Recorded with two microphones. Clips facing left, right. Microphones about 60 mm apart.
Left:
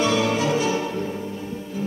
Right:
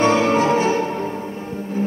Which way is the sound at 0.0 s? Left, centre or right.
Right.